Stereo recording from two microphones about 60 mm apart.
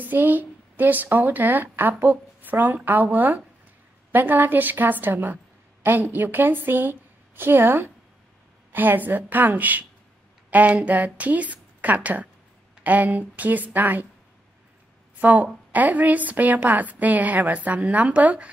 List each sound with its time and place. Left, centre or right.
0.0 s a woman's voice: right
15.1 s a woman's voice: right